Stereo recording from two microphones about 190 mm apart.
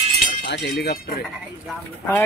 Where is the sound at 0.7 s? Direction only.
55° left (ahead or behind).